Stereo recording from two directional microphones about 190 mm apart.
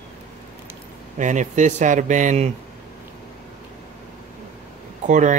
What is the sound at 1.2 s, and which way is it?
Speech, 40° right (ahead or behind).